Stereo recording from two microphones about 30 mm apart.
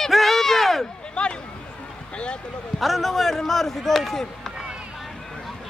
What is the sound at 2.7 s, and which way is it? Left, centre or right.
Speech, centre.